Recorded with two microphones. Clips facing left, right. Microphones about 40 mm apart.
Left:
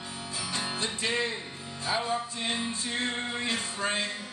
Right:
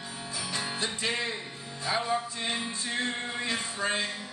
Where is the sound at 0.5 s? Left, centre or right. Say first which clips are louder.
Even; centre.